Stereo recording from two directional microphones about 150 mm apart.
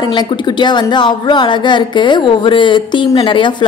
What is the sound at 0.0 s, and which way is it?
A woman's voice, 30° left (ahead or behind).